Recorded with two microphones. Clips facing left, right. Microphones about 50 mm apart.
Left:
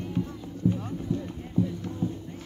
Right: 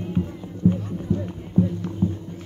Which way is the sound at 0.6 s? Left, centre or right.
Right.